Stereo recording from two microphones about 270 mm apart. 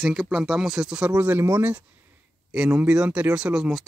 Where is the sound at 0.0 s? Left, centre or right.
Centre.